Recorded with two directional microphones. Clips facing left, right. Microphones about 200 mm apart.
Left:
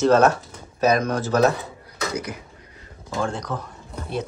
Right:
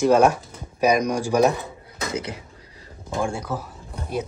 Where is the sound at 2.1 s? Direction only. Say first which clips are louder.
Right 2 dB; 25° right (ahead or behind).